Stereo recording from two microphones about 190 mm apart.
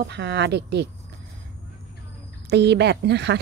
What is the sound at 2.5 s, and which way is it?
Speech, 60° right (ahead or behind).